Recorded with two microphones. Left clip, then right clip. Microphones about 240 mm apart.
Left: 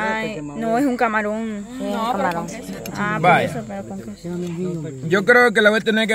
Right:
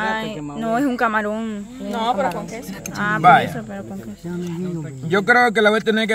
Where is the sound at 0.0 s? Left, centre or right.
Centre.